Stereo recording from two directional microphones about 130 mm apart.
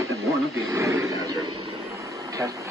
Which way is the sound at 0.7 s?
25° right (ahead or behind).